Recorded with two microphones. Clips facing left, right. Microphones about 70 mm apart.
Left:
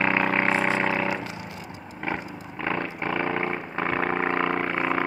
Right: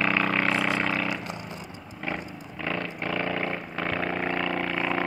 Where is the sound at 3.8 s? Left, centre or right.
Left.